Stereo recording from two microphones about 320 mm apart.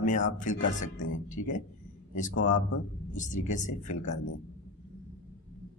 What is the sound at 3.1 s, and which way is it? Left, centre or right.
Speech, left.